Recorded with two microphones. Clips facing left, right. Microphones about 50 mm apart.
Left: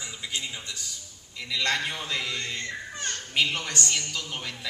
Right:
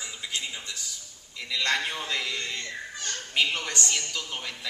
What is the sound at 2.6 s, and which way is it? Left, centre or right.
Speech, left.